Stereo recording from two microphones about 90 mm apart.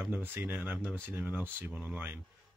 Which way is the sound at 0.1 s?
20° right (ahead or behind).